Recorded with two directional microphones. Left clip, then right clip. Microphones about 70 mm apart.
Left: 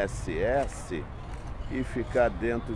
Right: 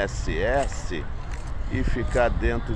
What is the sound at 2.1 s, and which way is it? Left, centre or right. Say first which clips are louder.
Speech: right 2 dB; left.